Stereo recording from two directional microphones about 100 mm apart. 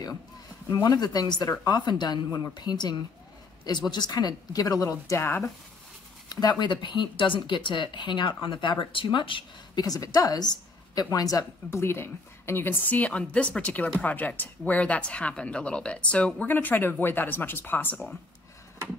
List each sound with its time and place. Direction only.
0.8 s speech: 40° left (ahead or behind)
6.6 s speech: 50° left (ahead or behind)
9.8 s a woman's voice: 40° left (ahead or behind); by 17.9 s 20° left (ahead or behind)